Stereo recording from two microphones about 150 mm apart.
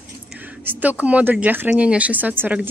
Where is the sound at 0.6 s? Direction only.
10° right (ahead or behind).